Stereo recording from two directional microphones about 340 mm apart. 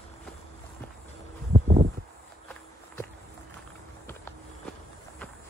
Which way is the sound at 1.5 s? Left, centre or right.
Right.